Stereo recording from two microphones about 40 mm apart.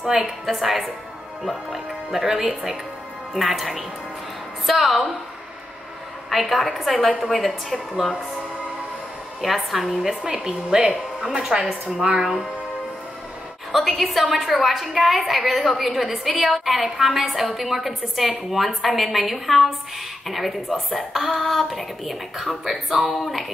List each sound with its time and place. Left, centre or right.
0.5 s a woman's voice: centre
6.3 s a woman's voice: centre
9.4 s a woman's voice: centre
10.2 s a woman's voice: right
13.7 s a woman's voice: centre